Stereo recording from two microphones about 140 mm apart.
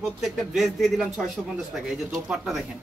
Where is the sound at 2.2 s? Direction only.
Centre (ahead or behind).